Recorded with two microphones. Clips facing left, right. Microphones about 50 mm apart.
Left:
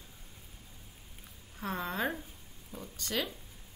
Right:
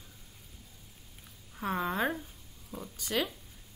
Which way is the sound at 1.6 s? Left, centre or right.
Centre.